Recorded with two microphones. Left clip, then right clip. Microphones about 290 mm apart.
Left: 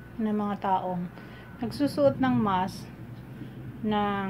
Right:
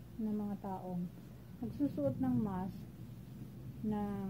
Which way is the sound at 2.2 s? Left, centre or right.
Centre.